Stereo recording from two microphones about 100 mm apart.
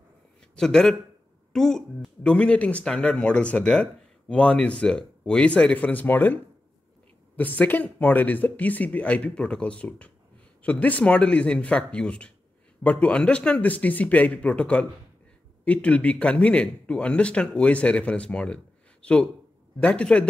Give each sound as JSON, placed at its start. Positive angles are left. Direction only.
{"t": 0.6, "sound": "speech", "side_deg": 5}